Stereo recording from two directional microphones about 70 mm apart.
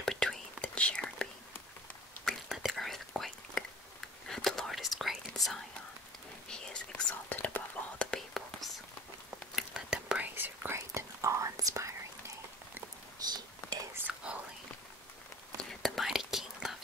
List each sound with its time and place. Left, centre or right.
0.0 s whispering: centre
2.2 s whispering: centre
6.5 s whispering: centre
9.6 s whispering: centre
10.2 s whispering: right
10.8 s whispering: right
13.2 s whispering: right
14.1 s whispering: centre
15.7 s whispering: centre